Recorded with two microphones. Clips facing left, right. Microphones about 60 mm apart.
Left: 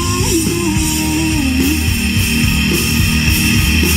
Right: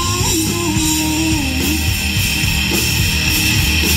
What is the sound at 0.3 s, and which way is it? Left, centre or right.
Music, left.